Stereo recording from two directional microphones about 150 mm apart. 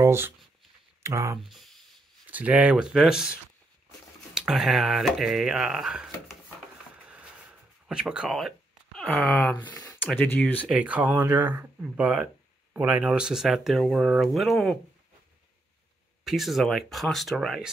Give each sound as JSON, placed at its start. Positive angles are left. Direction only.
{"t": 0.0, "sound": "a sound", "side_deg": -15}
{"t": 1.0, "sound": "speech", "side_deg": -20}
{"t": 1.4, "sound": "speech", "side_deg": 0}
{"t": 7.1, "sound": "a sound", "side_deg": -10}
{"t": 10.7, "sound": "speech", "side_deg": -10}
{"t": 16.3, "sound": "speech", "side_deg": 0}